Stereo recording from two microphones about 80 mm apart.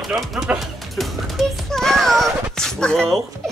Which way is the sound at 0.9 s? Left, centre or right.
Centre.